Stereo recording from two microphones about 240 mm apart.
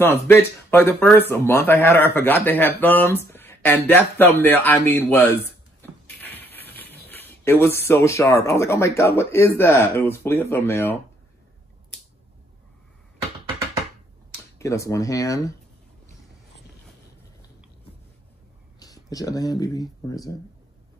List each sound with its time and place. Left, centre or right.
0.0 s speech: centre
5.8 s a sound: centre
7.1 s speech: centre
14.3 s speech: centre
18.8 s speech: centre